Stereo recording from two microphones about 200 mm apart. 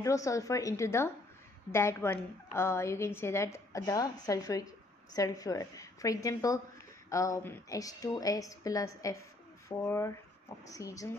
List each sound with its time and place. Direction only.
0.0 s a woman's voice: 15° left (ahead or behind)